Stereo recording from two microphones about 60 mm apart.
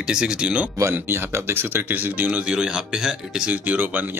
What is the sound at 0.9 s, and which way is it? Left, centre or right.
A man's voice, right.